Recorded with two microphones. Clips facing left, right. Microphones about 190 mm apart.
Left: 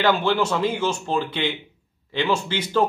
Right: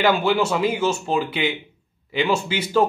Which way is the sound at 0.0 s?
10° right (ahead or behind).